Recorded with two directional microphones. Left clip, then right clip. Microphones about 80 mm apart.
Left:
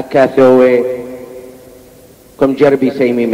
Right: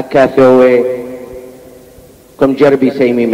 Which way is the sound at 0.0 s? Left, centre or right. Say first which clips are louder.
Right 1 dB; left.